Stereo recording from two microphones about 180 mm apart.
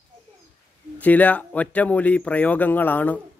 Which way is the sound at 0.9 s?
10° left (ahead or behind).